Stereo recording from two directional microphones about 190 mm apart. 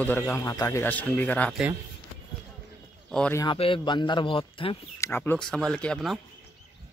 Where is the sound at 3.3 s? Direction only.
25° left (ahead or behind).